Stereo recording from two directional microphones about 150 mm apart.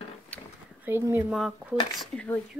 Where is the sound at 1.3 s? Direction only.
5° right (ahead or behind).